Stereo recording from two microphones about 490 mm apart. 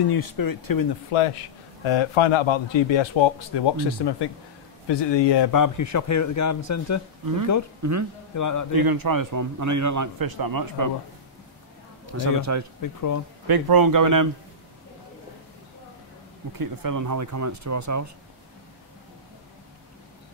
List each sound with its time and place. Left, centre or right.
0.1 s speech: left
1.1 s speech: left
5.5 s speech: left
7.8 s a man's voice: right
8.4 s speech: left
8.7 s a man's voice: right
12.1 s a man's voice: right
12.8 s speech: left
13.5 s a man's voice: right
16.5 s a man's voice: right